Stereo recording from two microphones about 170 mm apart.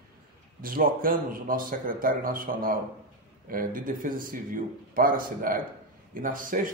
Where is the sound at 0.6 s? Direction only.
55° right (ahead or behind).